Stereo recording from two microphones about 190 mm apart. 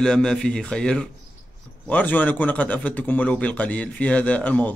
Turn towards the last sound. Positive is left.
turn(degrees=10)  # may be behind; listen again after turning